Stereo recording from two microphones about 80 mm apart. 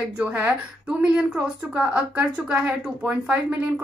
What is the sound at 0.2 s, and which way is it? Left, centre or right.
A woman's voice, centre.